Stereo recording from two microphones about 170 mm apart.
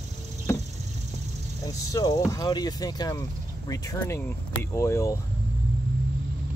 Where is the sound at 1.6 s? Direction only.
20° left (ahead or behind).